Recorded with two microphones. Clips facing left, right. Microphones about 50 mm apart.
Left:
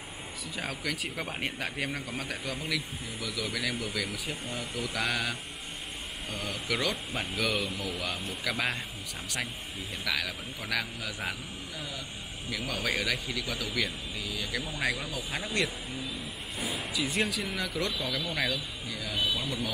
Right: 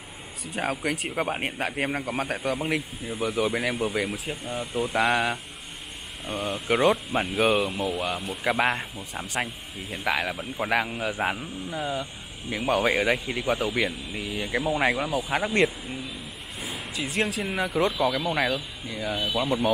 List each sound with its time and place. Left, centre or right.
0.6 s speech: right
4.3 s speech: right
4.7 s speech: right
6.4 s speech: right
17.0 s speech: centre
17.5 s speech: right
19.1 s speech: right